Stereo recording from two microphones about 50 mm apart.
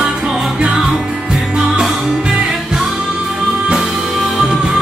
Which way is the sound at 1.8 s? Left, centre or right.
Centre.